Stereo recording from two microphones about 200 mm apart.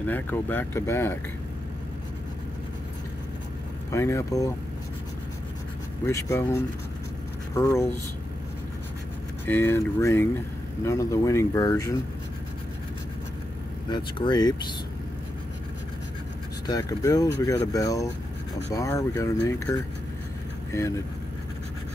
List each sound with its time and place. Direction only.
0.0 s speech: 10° left (ahead or behind)
3.9 s speech: 15° left (ahead or behind)
6.0 s speech: 15° left (ahead or behind)
9.5 s speech: 10° left (ahead or behind)
13.8 s speech: 25° left (ahead or behind)
16.6 s speech: 20° left (ahead or behind)